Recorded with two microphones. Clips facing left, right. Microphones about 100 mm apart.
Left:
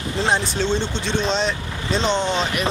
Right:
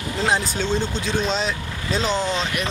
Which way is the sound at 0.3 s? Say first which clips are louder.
Left 1 dB; centre (ahead or behind).